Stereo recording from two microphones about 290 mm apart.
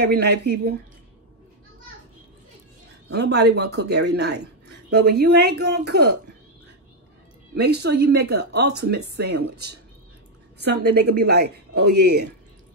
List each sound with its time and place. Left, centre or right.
0.0 s speech: right
3.1 s speech: right
7.5 s speech: right